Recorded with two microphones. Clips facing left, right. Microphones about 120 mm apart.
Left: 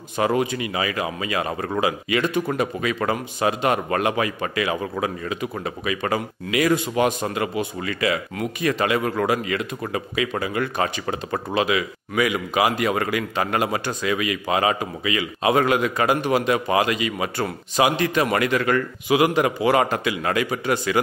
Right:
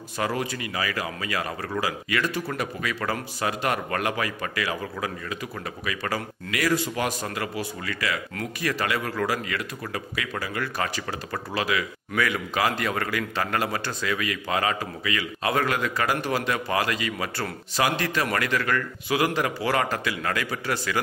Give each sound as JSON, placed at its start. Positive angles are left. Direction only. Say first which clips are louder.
{"t": 0.2, "sound": "speech", "louder": "left 7 dB", "side_deg": 20}